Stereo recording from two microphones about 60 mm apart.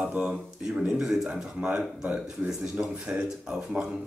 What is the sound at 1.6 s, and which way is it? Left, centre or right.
Speech, right.